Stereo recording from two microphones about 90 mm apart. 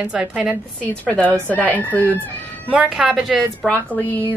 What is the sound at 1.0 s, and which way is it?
Speech, 15° left (ahead or behind).